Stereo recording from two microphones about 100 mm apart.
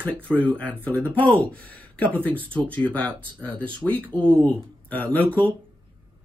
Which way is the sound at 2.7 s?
15° left (ahead or behind).